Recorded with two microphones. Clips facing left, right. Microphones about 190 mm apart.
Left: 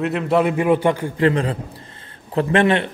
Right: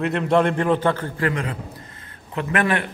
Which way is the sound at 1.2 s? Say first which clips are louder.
Left 7 dB; 30° left (ahead or behind).